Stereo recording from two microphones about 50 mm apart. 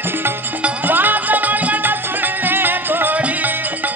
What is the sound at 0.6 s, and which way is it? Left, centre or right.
Music, right.